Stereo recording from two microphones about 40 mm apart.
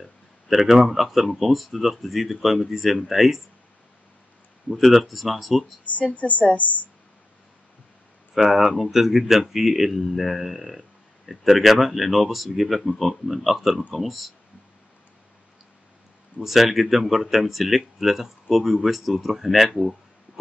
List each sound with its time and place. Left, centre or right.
0.0 s a man's voice: centre
4.7 s a man's voice: centre
6.1 s a woman's voice: left
8.4 s a man's voice: centre
16.3 s a man's voice: centre